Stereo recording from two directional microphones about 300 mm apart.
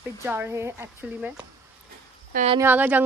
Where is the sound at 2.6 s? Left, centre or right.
Centre.